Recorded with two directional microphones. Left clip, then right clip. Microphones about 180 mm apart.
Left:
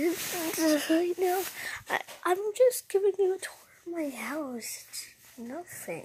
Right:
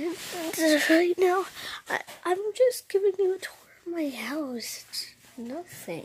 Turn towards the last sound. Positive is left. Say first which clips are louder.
# right 1 dB
turn(degrees=-20)  # may be behind; listen again after turning